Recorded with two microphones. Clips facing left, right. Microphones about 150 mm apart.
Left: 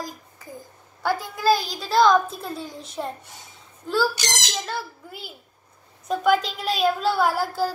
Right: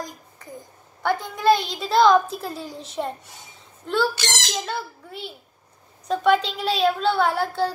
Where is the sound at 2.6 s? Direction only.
30° right (ahead or behind).